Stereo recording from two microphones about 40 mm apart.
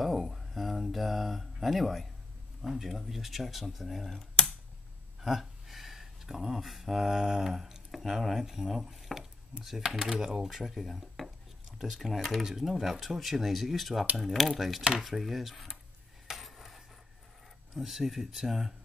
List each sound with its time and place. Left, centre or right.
0.0 s a sound: centre
2.6 s speech: centre
5.2 s speech: centre
11.2 s dishes: centre
11.9 s speech: centre
14.8 s dishes: centre
15.0 s speech: centre
16.3 s a sound: centre
17.7 s speech: centre